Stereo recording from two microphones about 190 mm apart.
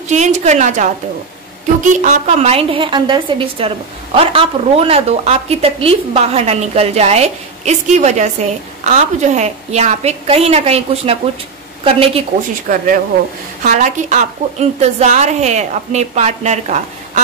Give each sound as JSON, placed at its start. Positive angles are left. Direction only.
{"t": 0.1, "sound": "a woman's voice", "side_deg": -35}
{"t": 12.6, "sound": "a woman's voice", "side_deg": -45}